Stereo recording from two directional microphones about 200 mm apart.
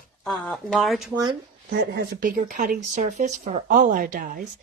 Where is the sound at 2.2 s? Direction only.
40° right (ahead or behind).